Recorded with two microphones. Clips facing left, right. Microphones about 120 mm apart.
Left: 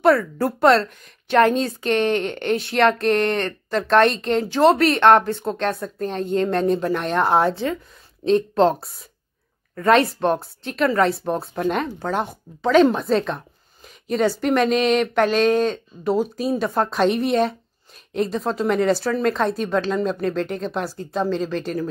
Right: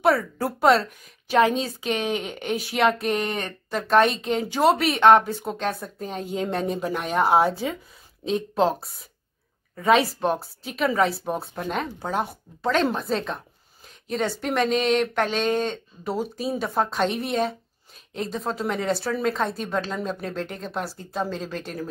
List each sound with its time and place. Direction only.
0.0 s speech: 5° right (ahead or behind)